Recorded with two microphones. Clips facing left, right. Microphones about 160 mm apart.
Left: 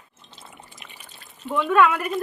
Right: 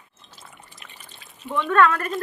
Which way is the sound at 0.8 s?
5° left (ahead or behind).